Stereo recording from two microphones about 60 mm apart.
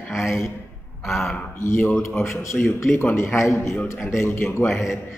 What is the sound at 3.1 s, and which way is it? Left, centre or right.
A man's voice, left.